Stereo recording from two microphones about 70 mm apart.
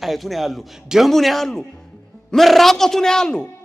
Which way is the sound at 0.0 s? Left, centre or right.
Centre.